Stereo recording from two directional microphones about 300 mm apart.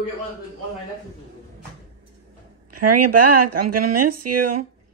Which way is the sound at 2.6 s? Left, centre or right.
Right.